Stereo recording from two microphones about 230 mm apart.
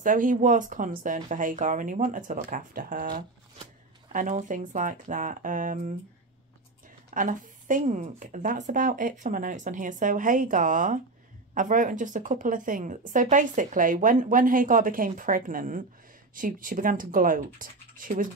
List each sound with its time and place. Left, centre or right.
0.0 s speech: right
7.2 s speech: right